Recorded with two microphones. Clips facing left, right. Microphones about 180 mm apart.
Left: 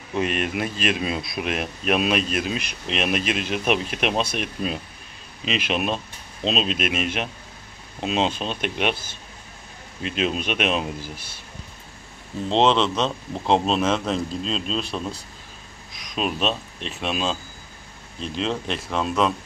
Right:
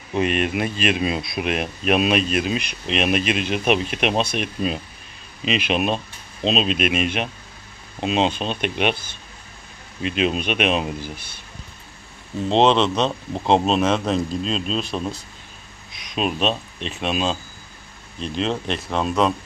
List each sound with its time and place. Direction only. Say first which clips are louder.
0.1 s speech: right 3 dB; centre (ahead or behind)
12.4 s speech: right 2 dB; 5° right (ahead or behind)
15.9 s a sound: even; 45° left (ahead or behind)
16.2 s speech: right 2 dB; centre (ahead or behind)